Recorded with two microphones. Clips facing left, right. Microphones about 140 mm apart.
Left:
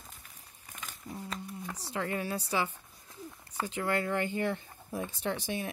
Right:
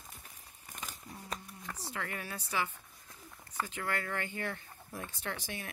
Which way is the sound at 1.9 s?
25° left (ahead or behind).